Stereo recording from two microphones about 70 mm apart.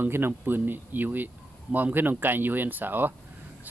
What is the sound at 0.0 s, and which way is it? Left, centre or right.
Speech, right.